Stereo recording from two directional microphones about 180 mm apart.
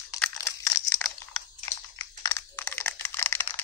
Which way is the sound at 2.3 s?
10° left (ahead or behind).